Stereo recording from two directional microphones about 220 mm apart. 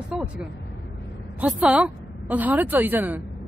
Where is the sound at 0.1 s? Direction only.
5° right (ahead or behind).